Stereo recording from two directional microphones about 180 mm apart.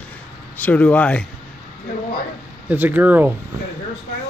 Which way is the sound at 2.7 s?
10° right (ahead or behind).